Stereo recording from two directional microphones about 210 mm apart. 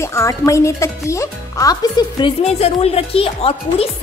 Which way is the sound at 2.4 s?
30° left (ahead or behind).